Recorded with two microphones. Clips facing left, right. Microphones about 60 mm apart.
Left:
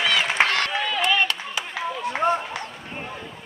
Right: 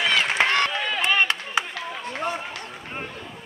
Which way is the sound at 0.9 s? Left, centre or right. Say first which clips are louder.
Even; right.